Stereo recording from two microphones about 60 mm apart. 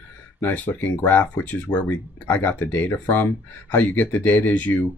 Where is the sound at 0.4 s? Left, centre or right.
Left.